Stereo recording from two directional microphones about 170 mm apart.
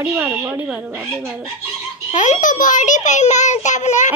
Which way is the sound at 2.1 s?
45° left (ahead or behind).